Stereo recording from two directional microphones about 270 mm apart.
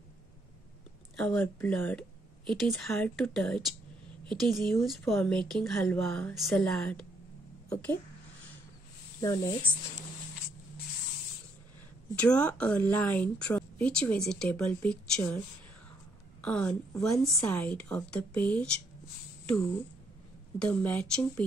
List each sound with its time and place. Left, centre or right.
1.1 s a woman's voice: centre
9.2 s speech: centre
12.2 s a woman's voice: centre
20.6 s a woman's voice: centre